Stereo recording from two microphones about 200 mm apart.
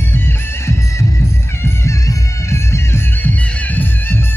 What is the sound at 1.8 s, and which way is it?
Music, 15° left (ahead or behind).